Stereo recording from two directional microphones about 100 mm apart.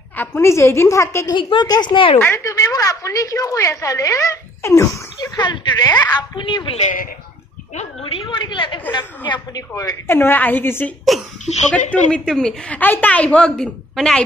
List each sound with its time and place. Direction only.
0.2 s a woman's voice: 25° left (ahead or behind)
1.3 s a woman's voice: 55° left (ahead or behind)
2.1 s a woman's voice: 25° left (ahead or behind)
5.4 s a woman's voice: 50° left (ahead or behind)
7.8 s a woman's voice: 75° left (ahead or behind); by 8.8 s 55° left (ahead or behind)
9.3 s a woman's voice: 35° left (ahead or behind)
10.0 s a woman's voice: 25° left (ahead or behind)
11.1 s a sound: centre (ahead or behind)
11.7 s a woman's voice: 10° left (ahead or behind)